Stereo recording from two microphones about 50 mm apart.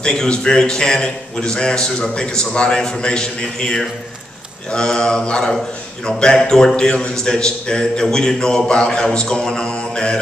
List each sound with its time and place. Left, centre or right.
0.0 s a man's voice: centre